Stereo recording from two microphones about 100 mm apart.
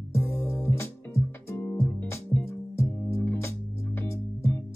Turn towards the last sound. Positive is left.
turn(degrees=25)  # may be behind; listen again after turning